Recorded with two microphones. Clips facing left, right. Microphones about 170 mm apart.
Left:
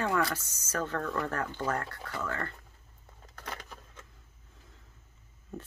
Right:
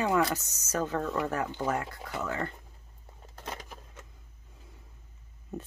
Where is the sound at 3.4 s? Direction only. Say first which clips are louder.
Right 2 dB; 20° right (ahead or behind).